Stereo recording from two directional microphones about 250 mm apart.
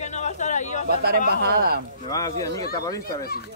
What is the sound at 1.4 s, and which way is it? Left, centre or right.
Speech, right.